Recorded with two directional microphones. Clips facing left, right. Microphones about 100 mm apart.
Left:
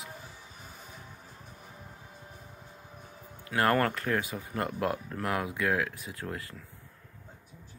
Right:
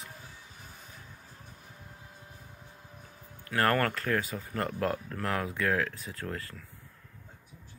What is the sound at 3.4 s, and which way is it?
Speech, 20° left (ahead or behind).